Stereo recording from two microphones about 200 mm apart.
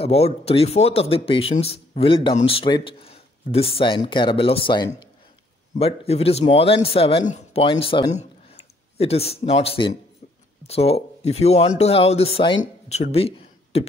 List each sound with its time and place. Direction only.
0.0 s speech: 30° left (ahead or behind)